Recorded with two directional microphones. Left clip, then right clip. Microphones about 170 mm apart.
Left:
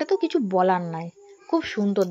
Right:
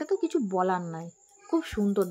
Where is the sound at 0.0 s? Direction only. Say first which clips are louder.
Left 5 dB; 5° left (ahead or behind).